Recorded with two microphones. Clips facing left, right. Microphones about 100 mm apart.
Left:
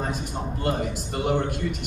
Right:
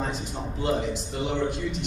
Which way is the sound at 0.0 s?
55° left (ahead or behind).